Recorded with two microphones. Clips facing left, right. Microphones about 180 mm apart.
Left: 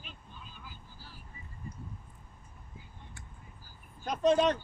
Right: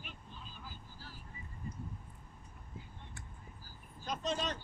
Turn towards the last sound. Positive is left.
turn(degrees=60)  # may be behind; listen again after turning